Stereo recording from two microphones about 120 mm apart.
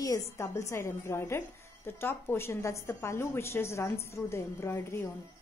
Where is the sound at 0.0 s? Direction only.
25° left (ahead or behind).